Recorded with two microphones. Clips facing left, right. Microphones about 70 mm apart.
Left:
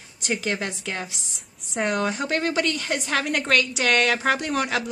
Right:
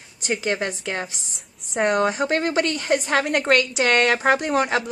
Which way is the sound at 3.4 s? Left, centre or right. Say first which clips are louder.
Right 3 dB; centre.